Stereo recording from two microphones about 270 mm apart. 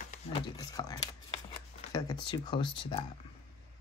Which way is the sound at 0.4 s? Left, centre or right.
Centre.